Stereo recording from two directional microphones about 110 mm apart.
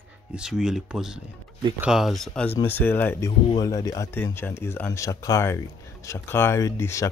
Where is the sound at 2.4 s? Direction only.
20° left (ahead or behind).